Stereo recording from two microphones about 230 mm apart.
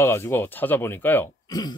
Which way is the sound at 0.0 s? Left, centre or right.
Centre.